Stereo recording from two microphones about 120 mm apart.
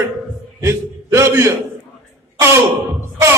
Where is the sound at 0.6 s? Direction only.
25° right (ahead or behind).